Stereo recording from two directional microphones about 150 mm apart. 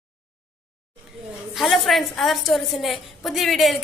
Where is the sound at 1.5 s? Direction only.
Centre (ahead or behind).